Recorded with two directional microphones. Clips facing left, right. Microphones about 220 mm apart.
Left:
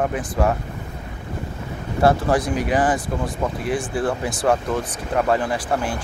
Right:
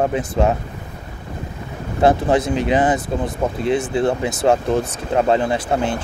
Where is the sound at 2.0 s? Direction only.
20° right (ahead or behind).